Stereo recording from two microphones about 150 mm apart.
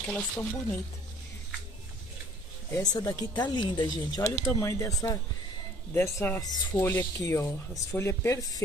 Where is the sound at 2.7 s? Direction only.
25° left (ahead or behind).